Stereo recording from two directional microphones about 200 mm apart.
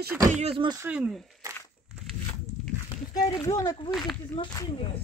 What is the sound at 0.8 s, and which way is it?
Speech, 5° right (ahead or behind).